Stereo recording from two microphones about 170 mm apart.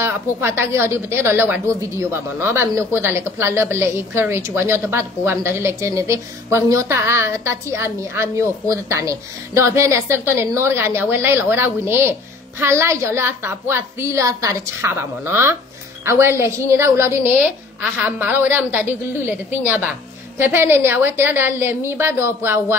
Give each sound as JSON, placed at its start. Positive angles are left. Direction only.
{"t": 0.0, "sound": "a woman's voice", "side_deg": -15}